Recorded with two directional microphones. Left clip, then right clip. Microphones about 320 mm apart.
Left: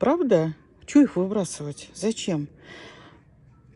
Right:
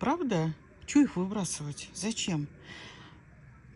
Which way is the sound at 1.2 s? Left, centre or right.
Left.